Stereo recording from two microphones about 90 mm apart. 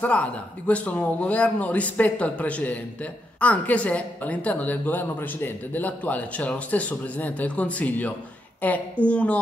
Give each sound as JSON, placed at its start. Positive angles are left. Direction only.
{"t": 0.0, "sound": "a woman's voice", "side_deg": 15}